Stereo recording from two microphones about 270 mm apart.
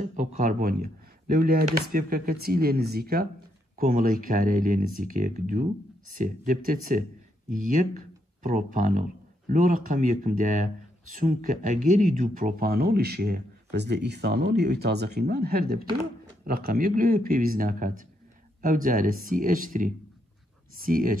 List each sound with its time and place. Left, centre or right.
0.0 s speech: right